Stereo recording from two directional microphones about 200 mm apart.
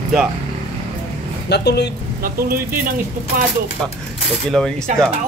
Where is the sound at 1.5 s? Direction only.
55° left (ahead or behind).